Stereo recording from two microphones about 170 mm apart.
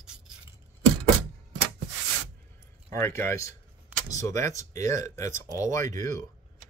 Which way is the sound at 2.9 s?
15° left (ahead or behind).